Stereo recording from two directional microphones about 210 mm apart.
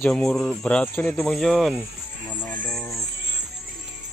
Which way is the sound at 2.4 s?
5° left (ahead or behind).